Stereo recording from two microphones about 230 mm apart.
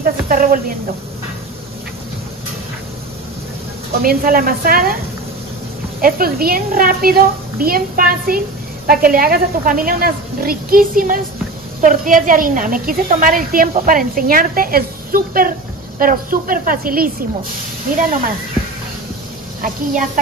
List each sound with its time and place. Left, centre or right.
0.0 s a woman's voice: right
4.0 s a woman's voice: right
5.9 s a woman's voice: right
19.6 s a woman's voice: right